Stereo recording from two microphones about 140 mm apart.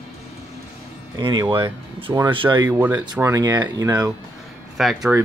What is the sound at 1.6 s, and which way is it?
Speech, 40° right (ahead or behind).